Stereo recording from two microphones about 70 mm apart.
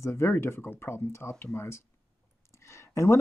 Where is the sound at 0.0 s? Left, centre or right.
Left.